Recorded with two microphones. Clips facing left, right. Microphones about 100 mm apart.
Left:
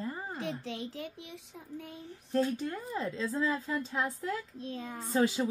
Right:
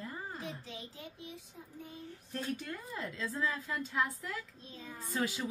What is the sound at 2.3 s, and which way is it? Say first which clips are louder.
A woman's voice: left 9 dB; 30° left (ahead or behind).